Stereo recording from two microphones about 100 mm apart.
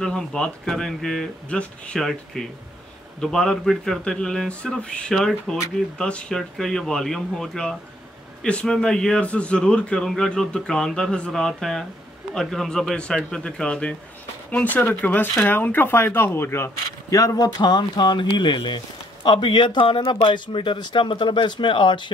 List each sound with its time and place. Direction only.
0.0 s a man's voice: 5° left (ahead or behind); by 22.0 s 50° left (ahead or behind)